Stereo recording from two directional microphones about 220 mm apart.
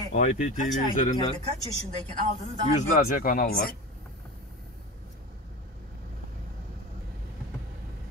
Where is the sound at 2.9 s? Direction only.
40° left (ahead or behind).